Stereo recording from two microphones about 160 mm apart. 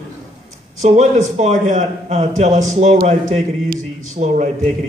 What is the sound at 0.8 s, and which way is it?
A man's voice, 45° right (ahead or behind).